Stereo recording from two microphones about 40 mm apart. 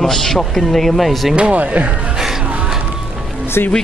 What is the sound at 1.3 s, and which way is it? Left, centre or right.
Speech, right.